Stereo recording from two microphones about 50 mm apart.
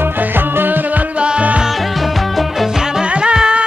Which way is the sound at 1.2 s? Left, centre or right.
Right.